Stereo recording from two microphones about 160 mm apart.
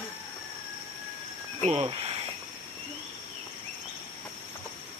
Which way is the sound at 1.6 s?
40° right (ahead or behind).